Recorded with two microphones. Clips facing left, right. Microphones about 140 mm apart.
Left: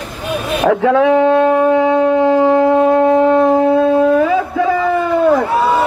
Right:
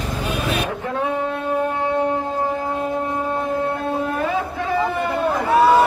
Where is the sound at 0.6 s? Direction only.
90° left.